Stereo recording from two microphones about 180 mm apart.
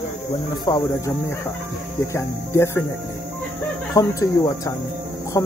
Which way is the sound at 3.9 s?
20° left (ahead or behind).